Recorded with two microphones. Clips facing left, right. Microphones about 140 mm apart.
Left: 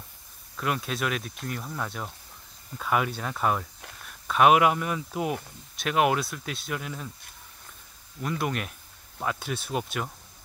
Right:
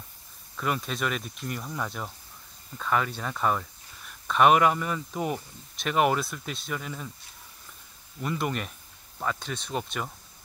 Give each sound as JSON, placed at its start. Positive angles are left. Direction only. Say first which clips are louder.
{"t": 0.6, "sound": "speech", "louder": "even", "side_deg": 0}
{"t": 8.2, "sound": "speech", "louder": "even", "side_deg": 0}